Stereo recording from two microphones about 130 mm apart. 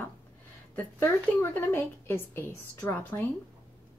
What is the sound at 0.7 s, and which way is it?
Speech, 20° left (ahead or behind).